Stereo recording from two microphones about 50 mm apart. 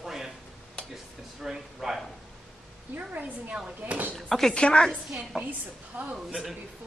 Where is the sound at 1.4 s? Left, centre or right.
Centre.